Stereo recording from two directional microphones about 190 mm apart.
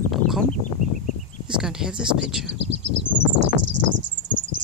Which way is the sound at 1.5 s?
5° right (ahead or behind).